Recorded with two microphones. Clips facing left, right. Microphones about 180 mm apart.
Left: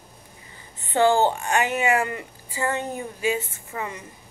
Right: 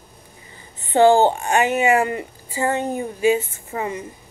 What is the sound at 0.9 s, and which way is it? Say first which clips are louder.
A woman's voice: right 5 dB; 20° right (ahead or behind).